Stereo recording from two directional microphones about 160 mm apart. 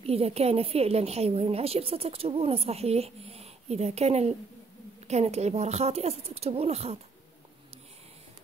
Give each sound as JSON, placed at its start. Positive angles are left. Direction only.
{"t": 0.0, "sound": "a woman's voice", "side_deg": -40}